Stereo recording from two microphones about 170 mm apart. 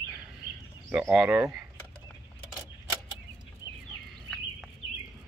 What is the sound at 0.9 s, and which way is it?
Speech, 10° right (ahead or behind).